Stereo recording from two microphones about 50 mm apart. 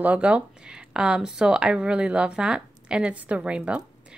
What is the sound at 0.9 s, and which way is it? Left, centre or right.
A woman's voice, centre.